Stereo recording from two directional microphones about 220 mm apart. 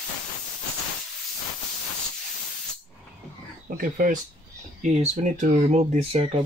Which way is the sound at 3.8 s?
40° right (ahead or behind).